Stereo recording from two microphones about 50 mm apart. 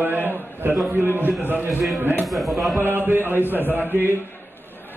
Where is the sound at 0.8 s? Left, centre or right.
Right.